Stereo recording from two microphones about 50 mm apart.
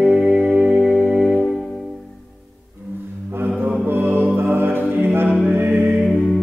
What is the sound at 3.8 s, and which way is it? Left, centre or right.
Mantra, right.